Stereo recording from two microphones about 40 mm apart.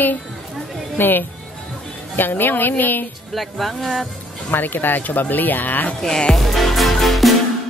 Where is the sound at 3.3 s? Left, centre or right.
Centre.